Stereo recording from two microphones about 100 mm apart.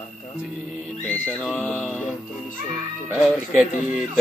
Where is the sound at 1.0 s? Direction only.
15° left (ahead or behind).